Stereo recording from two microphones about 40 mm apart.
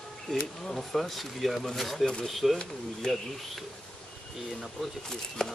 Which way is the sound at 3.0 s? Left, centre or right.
Centre.